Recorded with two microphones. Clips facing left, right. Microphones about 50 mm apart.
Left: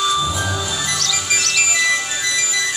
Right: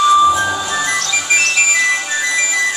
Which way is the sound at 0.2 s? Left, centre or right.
Right.